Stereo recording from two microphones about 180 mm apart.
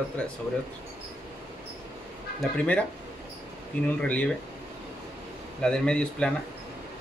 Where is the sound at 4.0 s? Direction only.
5° left (ahead or behind).